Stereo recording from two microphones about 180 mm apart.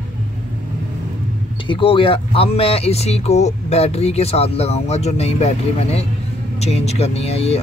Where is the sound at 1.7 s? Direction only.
30° left (ahead or behind).